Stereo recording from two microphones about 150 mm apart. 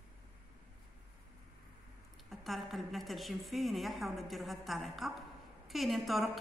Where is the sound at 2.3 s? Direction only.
Centre (ahead or behind).